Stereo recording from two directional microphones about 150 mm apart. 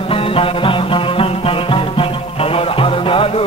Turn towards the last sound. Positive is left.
turn(degrees=40)  # may be behind; listen again after turning